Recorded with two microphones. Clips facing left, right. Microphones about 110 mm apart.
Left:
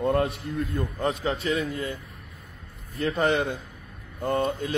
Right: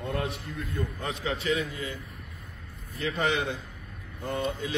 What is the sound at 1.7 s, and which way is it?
Speech, 50° left (ahead or behind).